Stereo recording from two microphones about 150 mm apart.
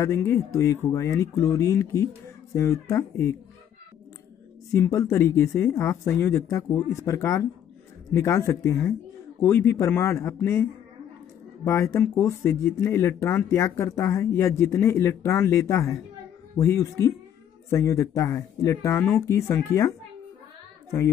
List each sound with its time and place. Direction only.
0.0 s speech: 15° left (ahead or behind)
4.7 s speech: 20° left (ahead or behind)